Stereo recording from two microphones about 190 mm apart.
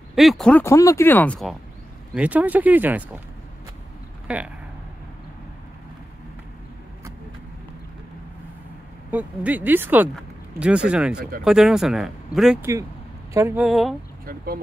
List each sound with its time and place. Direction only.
0.1 s speech: centre (ahead or behind)
2.1 s speech: 5° right (ahead or behind)
4.3 s speech: 5° right (ahead or behind)
9.1 s speech: 10° right (ahead or behind)
13.3 s speech: 15° right (ahead or behind)
13.7 s speech: centre (ahead or behind)
14.2 s speech: 50° right (ahead or behind)